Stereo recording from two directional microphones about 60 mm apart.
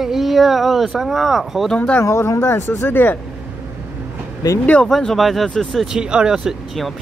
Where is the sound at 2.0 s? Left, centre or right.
Left.